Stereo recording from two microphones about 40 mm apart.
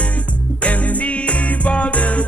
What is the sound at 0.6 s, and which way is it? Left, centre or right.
Music, left.